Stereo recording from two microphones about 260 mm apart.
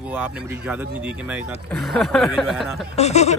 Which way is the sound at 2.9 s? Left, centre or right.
Left.